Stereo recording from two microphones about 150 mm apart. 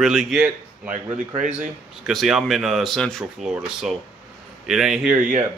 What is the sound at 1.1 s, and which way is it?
Speech, 55° right (ahead or behind).